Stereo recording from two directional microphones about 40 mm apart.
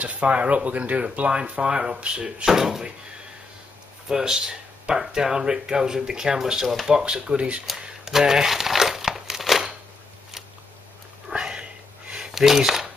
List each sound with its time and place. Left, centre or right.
0.0 s speech: right
2.4 s speech: centre
4.1 s speech: centre
7.2 s speech: right
8.0 s crumpling: centre
11.3 s a sound: right
12.1 s a sound: centre